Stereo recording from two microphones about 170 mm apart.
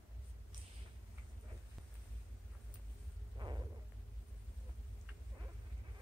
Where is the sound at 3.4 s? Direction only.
25° right (ahead or behind).